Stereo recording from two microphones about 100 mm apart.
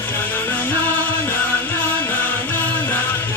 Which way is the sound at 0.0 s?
20° left (ahead or behind).